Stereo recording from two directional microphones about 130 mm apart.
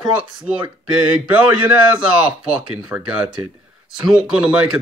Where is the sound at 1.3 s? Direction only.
10° right (ahead or behind).